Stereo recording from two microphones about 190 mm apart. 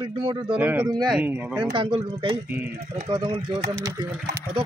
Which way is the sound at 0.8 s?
20° right (ahead or behind).